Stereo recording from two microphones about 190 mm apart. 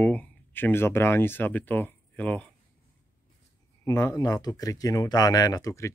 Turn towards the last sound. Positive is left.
turn(degrees=15)  # may be behind; listen again after turning